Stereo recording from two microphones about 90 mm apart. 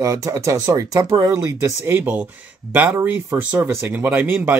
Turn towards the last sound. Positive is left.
turn(degrees=-20)  # may be behind; listen again after turning